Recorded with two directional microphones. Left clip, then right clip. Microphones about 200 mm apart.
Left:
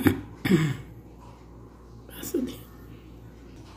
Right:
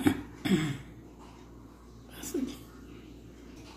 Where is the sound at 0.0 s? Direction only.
50° left (ahead or behind).